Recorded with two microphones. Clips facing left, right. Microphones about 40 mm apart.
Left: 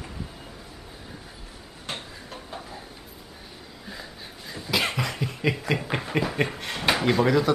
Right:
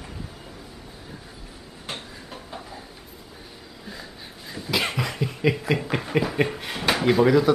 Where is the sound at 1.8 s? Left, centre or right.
Centre.